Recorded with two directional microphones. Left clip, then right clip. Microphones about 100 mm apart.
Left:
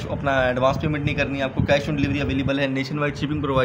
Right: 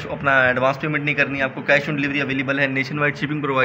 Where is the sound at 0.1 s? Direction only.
30° left (ahead or behind).